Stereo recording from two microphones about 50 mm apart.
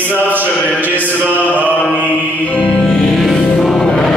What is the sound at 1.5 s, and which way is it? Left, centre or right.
Mantra, left.